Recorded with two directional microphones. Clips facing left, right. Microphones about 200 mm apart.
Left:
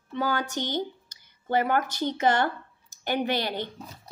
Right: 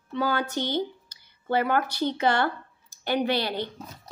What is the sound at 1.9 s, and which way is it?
Speech, 20° left (ahead or behind).